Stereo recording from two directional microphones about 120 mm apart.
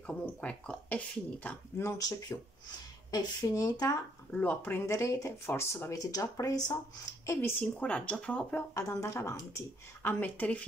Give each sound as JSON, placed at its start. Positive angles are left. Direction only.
{"t": 0.0, "sound": "speech", "side_deg": 10}
{"t": 1.8, "sound": "speech", "side_deg": 25}
{"t": 4.3, "sound": "speech", "side_deg": 15}
{"t": 7.6, "sound": "speech", "side_deg": 10}
{"t": 8.7, "sound": "speech", "side_deg": 25}